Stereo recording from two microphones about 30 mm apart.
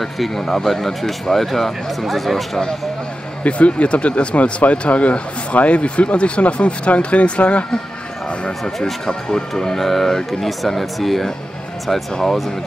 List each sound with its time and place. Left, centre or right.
0.4 s speech: centre
3.4 s speech: left
4.4 s speech: left
8.7 s speech: centre
10.6 s speech: centre